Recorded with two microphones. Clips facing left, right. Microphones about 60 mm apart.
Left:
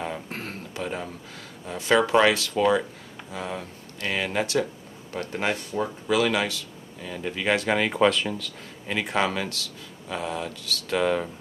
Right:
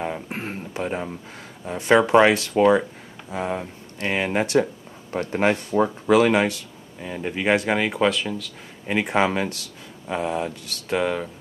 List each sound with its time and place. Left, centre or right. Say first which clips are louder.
0.0 s speech: right 4 dB; centre
7.7 s speech: even; centre
8.8 s speech: right 4 dB; right
11.0 s speech: even; centre